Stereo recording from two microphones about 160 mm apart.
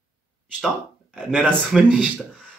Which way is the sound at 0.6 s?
Centre (ahead or behind).